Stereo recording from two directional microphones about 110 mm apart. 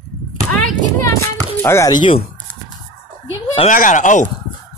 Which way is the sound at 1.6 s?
25° left (ahead or behind).